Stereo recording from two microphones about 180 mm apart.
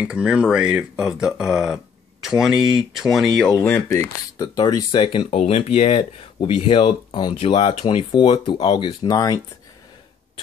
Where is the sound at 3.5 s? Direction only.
15° left (ahead or behind).